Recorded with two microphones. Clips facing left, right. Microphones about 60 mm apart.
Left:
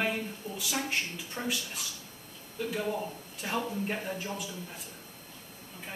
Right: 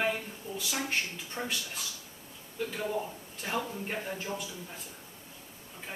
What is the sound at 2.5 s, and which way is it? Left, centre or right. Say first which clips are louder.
A man's voice: left 1 dB; centre.